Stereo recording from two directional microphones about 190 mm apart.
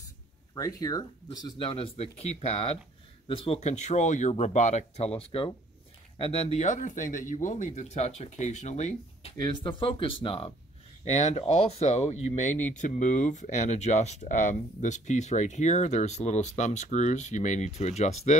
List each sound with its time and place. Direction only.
0.6 s speech: 20° left (ahead or behind); by 9.3 s 35° left (ahead or behind)
9.4 s speech: 25° left (ahead or behind)